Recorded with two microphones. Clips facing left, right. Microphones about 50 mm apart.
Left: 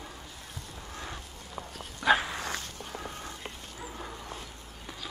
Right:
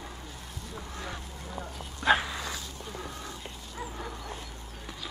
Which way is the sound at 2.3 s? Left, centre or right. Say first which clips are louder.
Left 1 dB; left.